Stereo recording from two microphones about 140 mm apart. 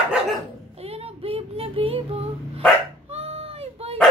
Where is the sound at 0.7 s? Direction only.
45° right (ahead or behind).